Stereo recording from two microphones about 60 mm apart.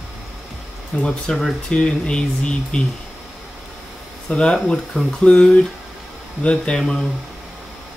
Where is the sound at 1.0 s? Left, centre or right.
Centre.